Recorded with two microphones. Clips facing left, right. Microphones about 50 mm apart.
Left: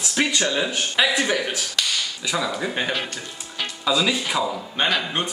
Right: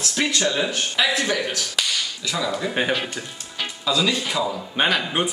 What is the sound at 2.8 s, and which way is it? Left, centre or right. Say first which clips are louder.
Speech: right 4 dB; centre.